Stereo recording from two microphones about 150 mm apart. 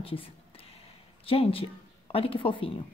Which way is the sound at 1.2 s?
40° left (ahead or behind).